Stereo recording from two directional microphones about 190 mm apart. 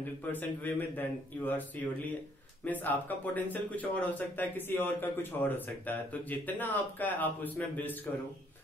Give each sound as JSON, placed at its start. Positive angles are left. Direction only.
{"t": 0.2, "sound": "speech", "side_deg": 10}
{"t": 2.6, "sound": "speech", "side_deg": 10}